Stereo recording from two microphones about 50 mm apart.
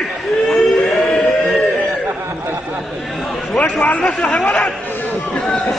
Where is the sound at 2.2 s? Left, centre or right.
Right.